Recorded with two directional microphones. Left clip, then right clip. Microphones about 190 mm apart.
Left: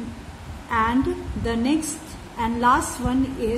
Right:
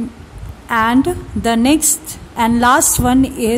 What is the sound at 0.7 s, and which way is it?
A woman's voice, 55° right (ahead or behind).